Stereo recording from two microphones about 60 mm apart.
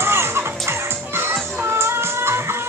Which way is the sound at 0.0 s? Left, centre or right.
Right.